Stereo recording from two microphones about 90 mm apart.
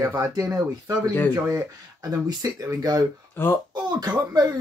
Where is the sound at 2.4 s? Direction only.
35° right (ahead or behind).